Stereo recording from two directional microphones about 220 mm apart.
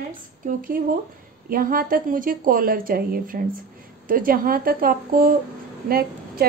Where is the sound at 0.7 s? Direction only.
40° right (ahead or behind).